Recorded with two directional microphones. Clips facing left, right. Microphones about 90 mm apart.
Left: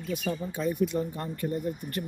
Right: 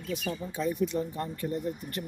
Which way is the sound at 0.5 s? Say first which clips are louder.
Left 1 dB; 50° left (ahead or behind).